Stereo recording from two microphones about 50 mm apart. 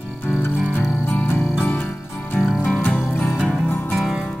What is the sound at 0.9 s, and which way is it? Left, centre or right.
Music, left.